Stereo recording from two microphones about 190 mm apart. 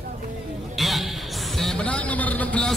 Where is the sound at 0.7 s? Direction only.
Centre (ahead or behind).